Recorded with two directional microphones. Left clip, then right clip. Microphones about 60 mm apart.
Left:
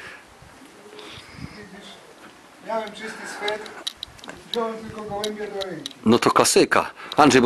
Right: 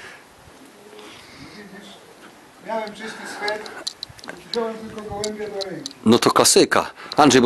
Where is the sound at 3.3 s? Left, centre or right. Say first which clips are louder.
Right 2 dB; right.